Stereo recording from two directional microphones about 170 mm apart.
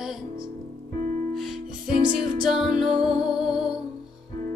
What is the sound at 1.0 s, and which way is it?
Music, 45° right (ahead or behind).